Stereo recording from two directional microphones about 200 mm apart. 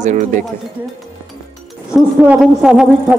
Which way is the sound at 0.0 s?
35° right (ahead or behind).